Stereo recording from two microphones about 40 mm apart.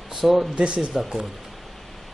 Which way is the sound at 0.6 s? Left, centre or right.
Right.